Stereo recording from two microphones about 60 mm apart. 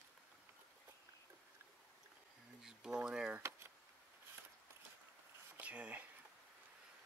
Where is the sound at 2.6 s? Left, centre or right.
Centre.